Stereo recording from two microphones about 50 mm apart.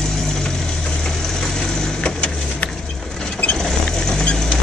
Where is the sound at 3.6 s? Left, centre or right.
Centre.